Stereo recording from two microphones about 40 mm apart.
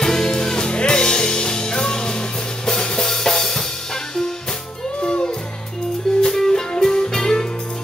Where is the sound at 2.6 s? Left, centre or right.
Centre.